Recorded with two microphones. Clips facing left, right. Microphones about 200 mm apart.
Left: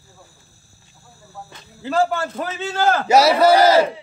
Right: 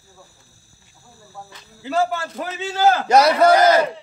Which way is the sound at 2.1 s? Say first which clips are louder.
Left 2 dB; 50° left (ahead or behind).